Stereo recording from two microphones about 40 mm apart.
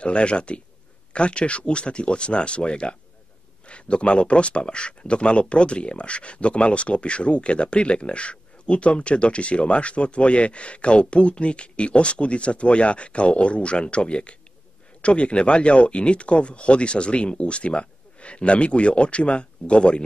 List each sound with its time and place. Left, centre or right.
0.0 s speech: left